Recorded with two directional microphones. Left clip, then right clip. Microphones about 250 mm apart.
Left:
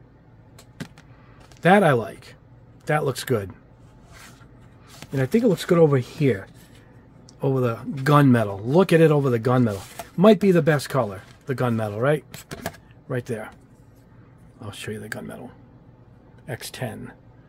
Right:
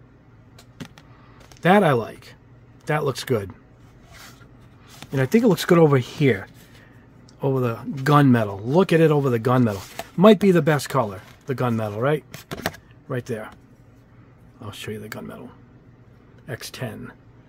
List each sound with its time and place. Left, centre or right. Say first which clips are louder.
1.6 s speech: even; centre
5.1 s speech: right 2 dB; centre
7.3 s speech: even; centre
14.6 s speech: even; centre